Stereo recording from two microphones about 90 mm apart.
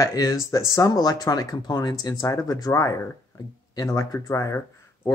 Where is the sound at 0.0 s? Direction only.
40° left (ahead or behind).